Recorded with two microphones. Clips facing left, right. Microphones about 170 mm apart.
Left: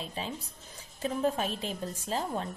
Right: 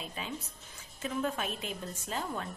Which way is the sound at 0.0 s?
30° left (ahead or behind).